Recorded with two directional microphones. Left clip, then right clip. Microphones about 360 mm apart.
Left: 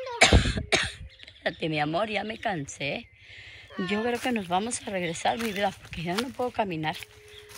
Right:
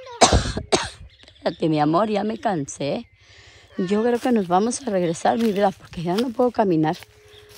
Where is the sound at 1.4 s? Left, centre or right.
Centre.